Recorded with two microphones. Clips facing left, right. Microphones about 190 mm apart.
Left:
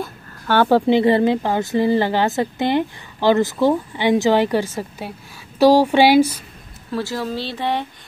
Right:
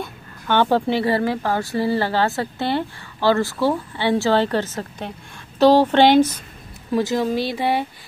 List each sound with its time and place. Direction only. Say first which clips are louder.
0.0 s speech: left 2 dB; 10° left (ahead or behind)
6.9 s speech: right 4 dB; 20° right (ahead or behind)